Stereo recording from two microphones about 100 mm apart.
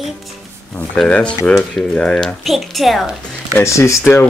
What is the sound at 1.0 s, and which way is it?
Speech, 15° left (ahead or behind).